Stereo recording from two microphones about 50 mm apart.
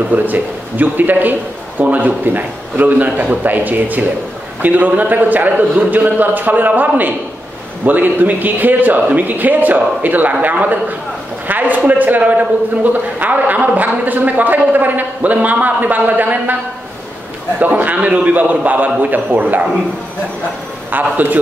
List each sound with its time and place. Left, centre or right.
0.1 s a man's voice: right
17.6 s a man's voice: right
20.9 s a man's voice: right